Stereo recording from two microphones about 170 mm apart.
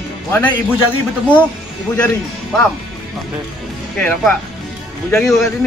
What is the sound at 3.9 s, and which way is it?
Speech, 5° left (ahead or behind).